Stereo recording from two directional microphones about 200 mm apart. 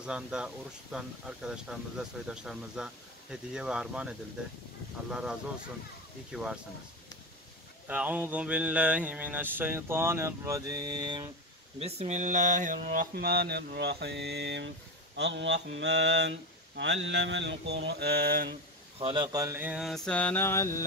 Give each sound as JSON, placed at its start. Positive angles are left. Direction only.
{"t": 0.0, "sound": "speech", "side_deg": -5}
{"t": 5.1, "sound": "speech", "side_deg": -5}
{"t": 7.9, "sound": "a sound", "side_deg": -10}
{"t": 11.8, "sound": "mantra", "side_deg": -35}
{"t": 15.1, "sound": "speech", "side_deg": -60}
{"t": 18.9, "sound": "speech", "side_deg": -25}